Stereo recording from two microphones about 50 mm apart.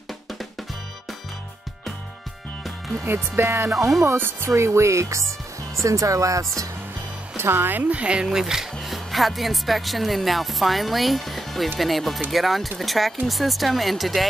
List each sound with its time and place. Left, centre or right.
3.1 s speech: right
3.7 s speech: centre
4.2 s speech: right
4.5 s speech: right
5.9 s speech: right
7.3 s speech: right
7.7 s speech: right; by 14.2 s centre